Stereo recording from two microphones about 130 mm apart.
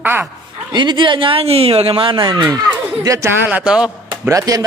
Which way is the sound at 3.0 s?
20° right (ahead or behind).